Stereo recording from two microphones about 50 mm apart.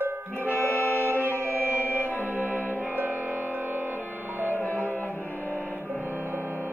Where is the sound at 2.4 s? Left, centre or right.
Left.